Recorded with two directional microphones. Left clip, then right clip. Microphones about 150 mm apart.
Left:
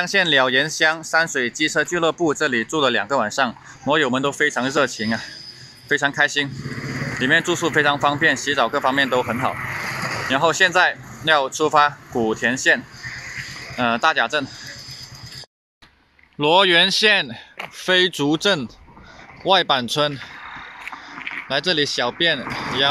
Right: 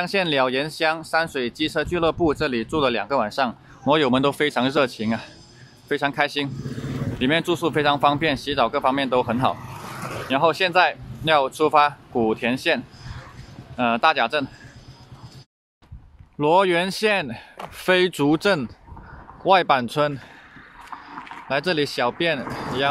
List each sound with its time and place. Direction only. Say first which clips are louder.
0.0 s speech: left 4 dB; centre (ahead or behind)
3.8 s speech: even; 20° right (ahead or behind)
9.9 s a sound: left 6 dB; 5° left (ahead or behind)
10.3 s speech: left 2 dB; 5° right (ahead or behind)
16.3 s speech: left 3 dB; 5° right (ahead or behind)
21.5 s speech: left 2 dB; centre (ahead or behind)
22.4 s speech: left 3 dB; 30° left (ahead or behind)